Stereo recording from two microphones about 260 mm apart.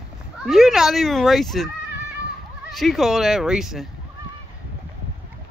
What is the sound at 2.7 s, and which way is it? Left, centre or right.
Speech, centre.